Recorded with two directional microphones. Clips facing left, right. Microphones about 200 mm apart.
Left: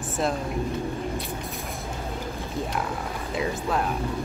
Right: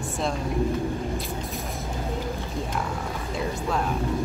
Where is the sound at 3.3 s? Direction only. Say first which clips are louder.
Left 1 dB; centre (ahead or behind).